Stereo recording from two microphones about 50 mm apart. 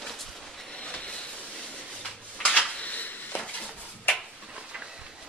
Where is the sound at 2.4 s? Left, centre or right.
Left.